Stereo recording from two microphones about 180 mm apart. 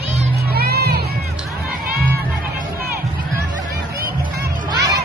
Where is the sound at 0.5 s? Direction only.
60° right (ahead or behind).